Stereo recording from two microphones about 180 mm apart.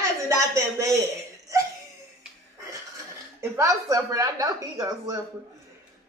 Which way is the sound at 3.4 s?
15° right (ahead or behind).